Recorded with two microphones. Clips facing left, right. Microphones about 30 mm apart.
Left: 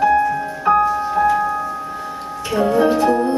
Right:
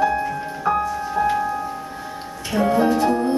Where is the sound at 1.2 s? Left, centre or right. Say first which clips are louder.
Left 4 dB; centre.